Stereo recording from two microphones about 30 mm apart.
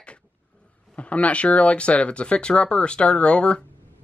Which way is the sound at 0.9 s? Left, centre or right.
Left.